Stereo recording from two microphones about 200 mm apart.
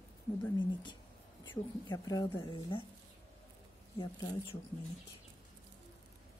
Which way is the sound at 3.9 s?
25° left (ahead or behind).